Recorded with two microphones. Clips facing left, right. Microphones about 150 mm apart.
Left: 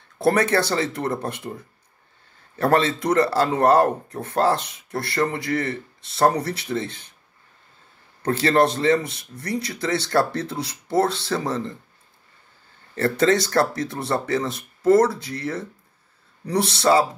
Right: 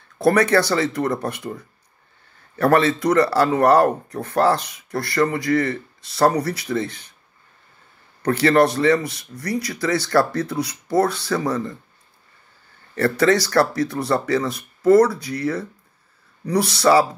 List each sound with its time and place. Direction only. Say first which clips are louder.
0.2 s speech: right 3 dB; 25° left (ahead or behind)
2.5 s speech: right 3 dB; 25° left (ahead or behind)
8.2 s a man's voice: right 3 dB; 25° left (ahead or behind)
12.9 s speech: right 2 dB; 25° left (ahead or behind)